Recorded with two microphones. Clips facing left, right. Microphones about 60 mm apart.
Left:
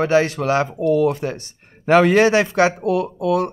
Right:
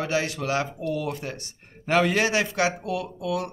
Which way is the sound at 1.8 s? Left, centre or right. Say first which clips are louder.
Left 9 dB; left.